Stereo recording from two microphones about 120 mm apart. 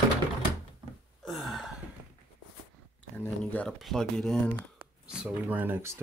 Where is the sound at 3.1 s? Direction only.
15° left (ahead or behind).